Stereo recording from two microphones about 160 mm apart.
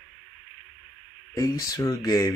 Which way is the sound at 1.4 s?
20° left (ahead or behind).